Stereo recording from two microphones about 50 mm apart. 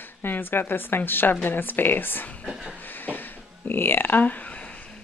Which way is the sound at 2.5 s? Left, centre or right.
Centre.